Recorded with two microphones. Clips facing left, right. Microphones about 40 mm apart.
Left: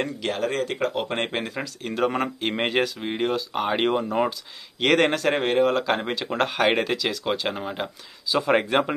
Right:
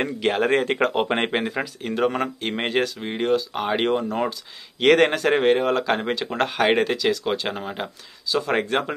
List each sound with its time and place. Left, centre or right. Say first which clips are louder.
0.3 s speech: right 7 dB; right
0.9 s speech: right 5 dB; right
1.2 s speech: right 4 dB; centre